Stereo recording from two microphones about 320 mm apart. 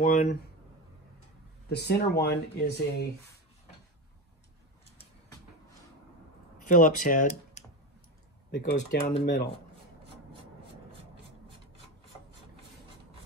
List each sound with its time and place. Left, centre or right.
0.0 s speech: left
1.7 s speech: left
6.6 s speech: left